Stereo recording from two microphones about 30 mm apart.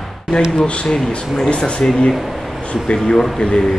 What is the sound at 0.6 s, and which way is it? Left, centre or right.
Speech, left.